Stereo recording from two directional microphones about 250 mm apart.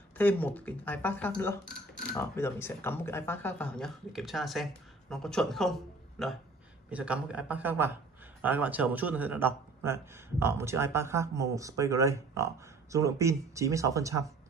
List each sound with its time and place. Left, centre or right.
0.2 s a man's voice: centre